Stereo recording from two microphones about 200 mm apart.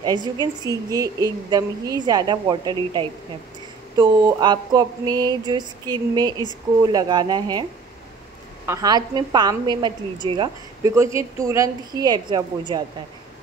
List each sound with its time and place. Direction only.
0.0 s a woman's voice: 20° right (ahead or behind)
8.6 s a woman's voice: 20° right (ahead or behind)